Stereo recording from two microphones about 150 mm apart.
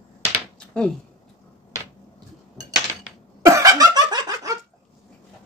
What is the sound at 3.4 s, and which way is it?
Laughter, 25° right (ahead or behind).